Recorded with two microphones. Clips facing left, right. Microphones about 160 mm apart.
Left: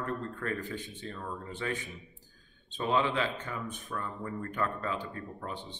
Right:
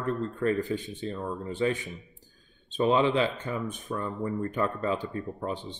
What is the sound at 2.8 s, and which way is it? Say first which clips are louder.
Speech: right 6 dB; 20° right (ahead or behind).